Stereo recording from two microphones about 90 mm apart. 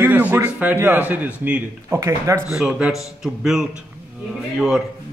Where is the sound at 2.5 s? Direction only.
5° right (ahead or behind).